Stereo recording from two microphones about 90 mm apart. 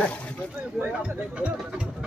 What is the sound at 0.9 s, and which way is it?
Speech, 10° right (ahead or behind).